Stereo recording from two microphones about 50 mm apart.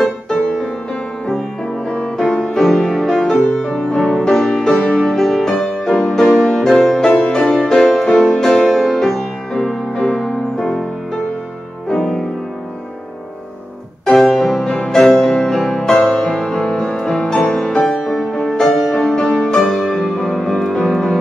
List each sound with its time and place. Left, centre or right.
0.0 s music: centre
1.9 s music: centre
11.9 s music: centre
14.0 s music: centre
14.7 s music: centre
19.5 s music: centre